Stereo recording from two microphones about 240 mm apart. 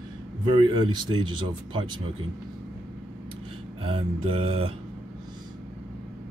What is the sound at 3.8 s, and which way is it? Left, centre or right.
Speech, right.